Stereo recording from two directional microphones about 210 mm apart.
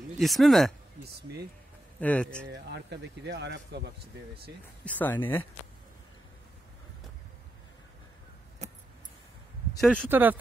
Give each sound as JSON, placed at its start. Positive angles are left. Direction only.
{"t": 0.2, "sound": "speech", "side_deg": 0}
{"t": 2.0, "sound": "speech", "side_deg": 5}
{"t": 2.5, "sound": "speech", "side_deg": -55}
{"t": 4.8, "sound": "speech", "side_deg": 10}
{"t": 9.8, "sound": "speech", "side_deg": 0}